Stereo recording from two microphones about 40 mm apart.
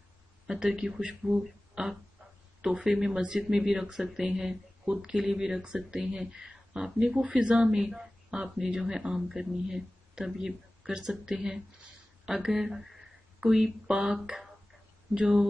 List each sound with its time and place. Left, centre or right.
0.5 s speech: centre
7.2 s speech: right
7.7 s speech: centre